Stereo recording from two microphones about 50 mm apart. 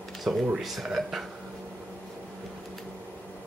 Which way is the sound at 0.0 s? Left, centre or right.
Centre.